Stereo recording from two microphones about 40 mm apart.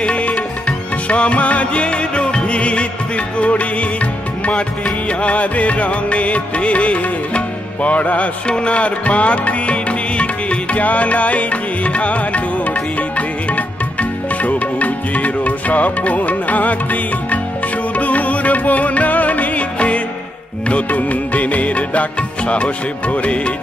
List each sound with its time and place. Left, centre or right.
0.0 s music: left